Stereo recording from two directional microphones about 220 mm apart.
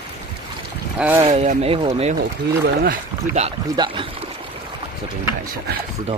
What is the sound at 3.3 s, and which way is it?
Speech, 25° right (ahead or behind).